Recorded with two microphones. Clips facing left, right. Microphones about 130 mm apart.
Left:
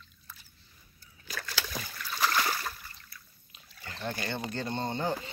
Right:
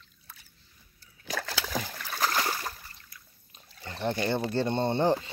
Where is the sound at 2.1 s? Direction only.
40° right (ahead or behind).